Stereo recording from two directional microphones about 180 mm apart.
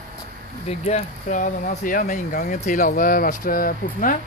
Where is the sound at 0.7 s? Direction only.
40° left (ahead or behind).